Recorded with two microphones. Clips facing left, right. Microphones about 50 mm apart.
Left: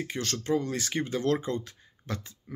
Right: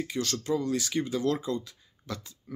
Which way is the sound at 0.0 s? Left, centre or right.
Left.